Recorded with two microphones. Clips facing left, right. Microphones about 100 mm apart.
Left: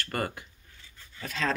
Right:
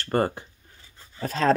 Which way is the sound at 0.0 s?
30° right (ahead or behind).